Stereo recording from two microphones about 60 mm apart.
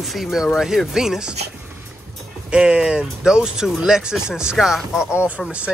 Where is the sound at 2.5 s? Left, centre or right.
Centre.